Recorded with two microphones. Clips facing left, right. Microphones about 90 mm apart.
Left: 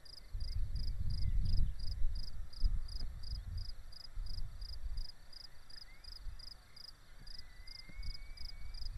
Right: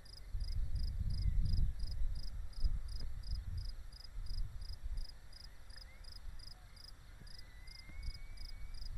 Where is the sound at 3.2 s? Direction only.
40° right (ahead or behind).